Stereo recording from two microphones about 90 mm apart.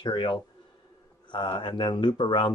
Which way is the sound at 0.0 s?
60° left (ahead or behind).